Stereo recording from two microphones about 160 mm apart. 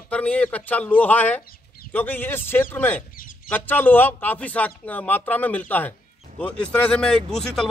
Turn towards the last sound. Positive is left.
turn(degrees=5)  # may be behind; listen again after turning